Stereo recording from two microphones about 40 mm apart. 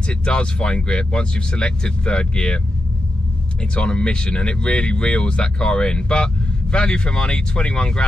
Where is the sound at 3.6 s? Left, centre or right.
Left.